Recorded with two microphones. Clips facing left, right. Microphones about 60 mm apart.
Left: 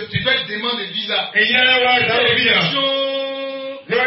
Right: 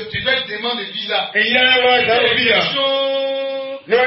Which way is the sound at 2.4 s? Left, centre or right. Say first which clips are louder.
Right 1 dB; centre.